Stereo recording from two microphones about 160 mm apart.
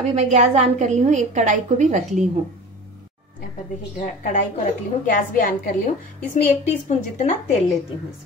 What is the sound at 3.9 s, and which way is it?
A woman's voice, 55° left (ahead or behind).